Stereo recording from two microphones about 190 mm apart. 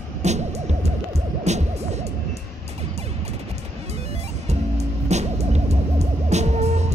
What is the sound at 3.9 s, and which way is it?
Music, 35° right (ahead or behind).